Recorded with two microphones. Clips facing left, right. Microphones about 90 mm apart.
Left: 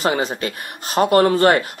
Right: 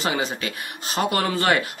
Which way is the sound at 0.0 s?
40° left (ahead or behind).